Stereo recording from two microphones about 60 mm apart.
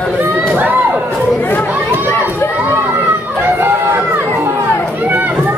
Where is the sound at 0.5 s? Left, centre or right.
Right.